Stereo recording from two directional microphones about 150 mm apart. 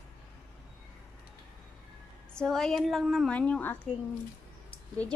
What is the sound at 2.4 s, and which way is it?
A woman's voice, 5° left (ahead or behind).